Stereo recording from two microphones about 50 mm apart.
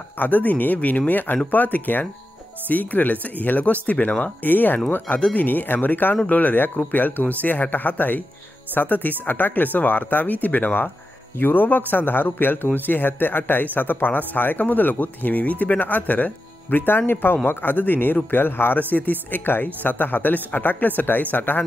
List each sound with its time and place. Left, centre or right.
0.2 s a man's voice: left